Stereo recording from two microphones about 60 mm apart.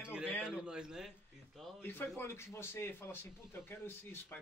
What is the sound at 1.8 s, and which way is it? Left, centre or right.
Speech, left.